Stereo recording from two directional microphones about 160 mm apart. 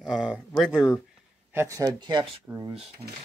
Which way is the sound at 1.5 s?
15° right (ahead or behind).